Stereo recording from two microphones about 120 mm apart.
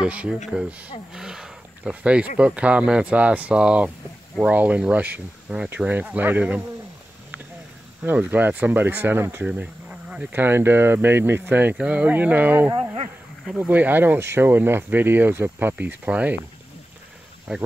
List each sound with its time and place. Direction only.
0.0 s speech: 10° right (ahead or behind)
8.0 s speech: 15° right (ahead or behind)
12.7 s a sound: 60° right (ahead or behind)
13.6 s speech: 15° right (ahead or behind)
17.5 s speech: 5° right (ahead or behind)